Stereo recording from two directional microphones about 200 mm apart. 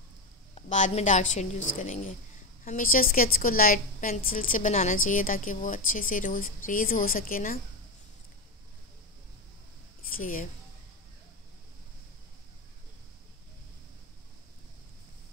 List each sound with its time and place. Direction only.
0.6 s a woman's voice: 35° left (ahead or behind)
10.1 s a woman's voice: 45° left (ahead or behind)